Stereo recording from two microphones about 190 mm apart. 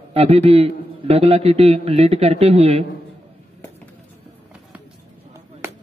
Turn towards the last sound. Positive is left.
turn(degrees=-15)  # may be behind; listen again after turning